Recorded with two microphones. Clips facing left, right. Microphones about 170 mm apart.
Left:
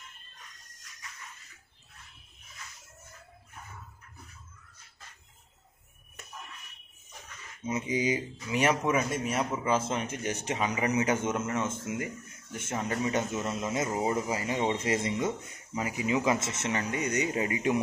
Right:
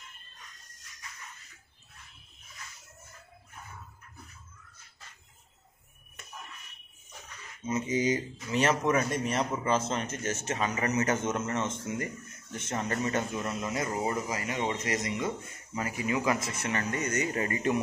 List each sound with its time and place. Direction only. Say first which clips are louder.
7.6 s speech: right 1 dB; 15° left (ahead or behind)
13.5 s speech: left 2 dB; 20° left (ahead or behind)
14.1 s speech: left 2 dB; 25° left (ahead or behind)